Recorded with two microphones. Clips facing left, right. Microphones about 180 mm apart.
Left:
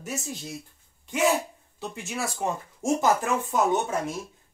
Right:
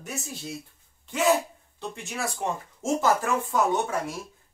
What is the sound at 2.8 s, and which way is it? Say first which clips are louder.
Speech: left 1 dB; 15° left (ahead or behind).